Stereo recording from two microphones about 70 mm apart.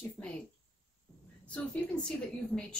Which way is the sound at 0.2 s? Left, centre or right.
Centre.